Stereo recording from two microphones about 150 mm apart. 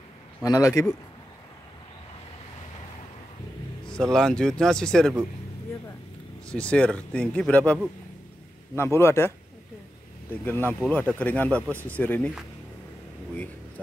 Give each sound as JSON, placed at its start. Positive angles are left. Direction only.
{"t": 0.4, "sound": "a man's voice", "side_deg": 25}
{"t": 3.8, "sound": "speech", "side_deg": 5}
{"t": 6.5, "sound": "speech", "side_deg": 5}
{"t": 10.4, "sound": "speech", "side_deg": 15}
{"t": 11.6, "sound": "speech", "side_deg": -15}
{"t": 12.0, "sound": "speech", "side_deg": 10}